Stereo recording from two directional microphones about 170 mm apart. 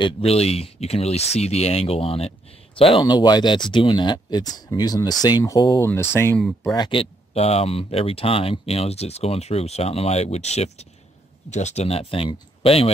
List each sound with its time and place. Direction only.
0.0 s speech: 35° left (ahead or behind)